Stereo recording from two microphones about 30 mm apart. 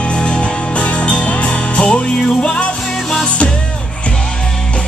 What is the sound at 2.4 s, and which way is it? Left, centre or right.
Music, left.